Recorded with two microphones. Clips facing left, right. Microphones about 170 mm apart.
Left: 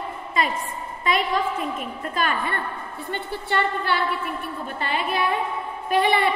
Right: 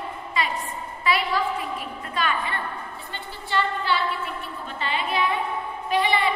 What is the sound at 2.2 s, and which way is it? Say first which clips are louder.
A woman's voice: left 1 dB; 50° left (ahead or behind).